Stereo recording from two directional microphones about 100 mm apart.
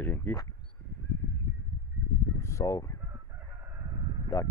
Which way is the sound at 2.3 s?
30° left (ahead or behind).